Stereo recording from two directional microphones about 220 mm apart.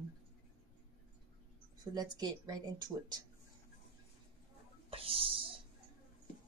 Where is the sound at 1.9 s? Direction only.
15° right (ahead or behind).